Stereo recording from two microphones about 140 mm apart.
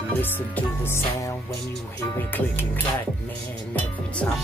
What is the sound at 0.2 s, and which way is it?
Music, 15° left (ahead or behind).